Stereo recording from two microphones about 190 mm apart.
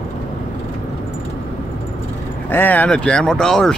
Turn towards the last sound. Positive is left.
turn(degrees=5)  # may be behind; listen again after turning